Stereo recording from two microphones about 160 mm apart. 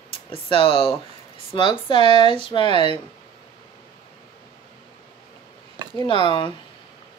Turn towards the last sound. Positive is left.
turn(degrees=30)  # may be behind; listen again after turning